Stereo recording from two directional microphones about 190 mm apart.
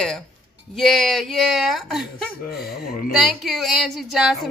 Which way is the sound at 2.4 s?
55° left (ahead or behind).